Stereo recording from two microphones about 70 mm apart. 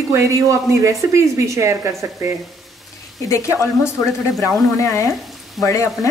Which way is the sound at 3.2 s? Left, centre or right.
Left.